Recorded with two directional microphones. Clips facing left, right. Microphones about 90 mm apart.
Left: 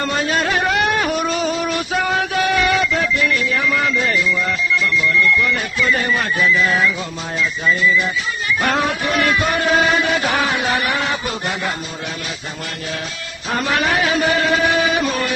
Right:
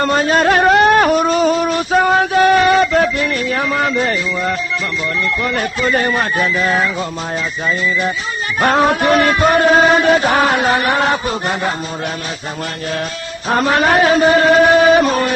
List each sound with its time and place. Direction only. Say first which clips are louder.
0.0 s a sound: right 6 dB; 40° right (ahead or behind)
3.7 s speech: right 3 dB; 40° right (ahead or behind)
13.5 s speech: right 6 dB; 40° right (ahead or behind)